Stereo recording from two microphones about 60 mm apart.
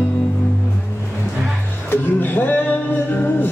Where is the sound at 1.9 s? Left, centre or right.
Left.